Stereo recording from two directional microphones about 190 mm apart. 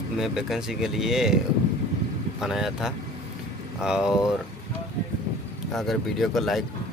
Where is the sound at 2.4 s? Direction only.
Centre (ahead or behind).